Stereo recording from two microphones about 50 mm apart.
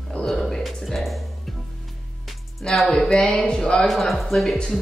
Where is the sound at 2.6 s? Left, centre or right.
Centre.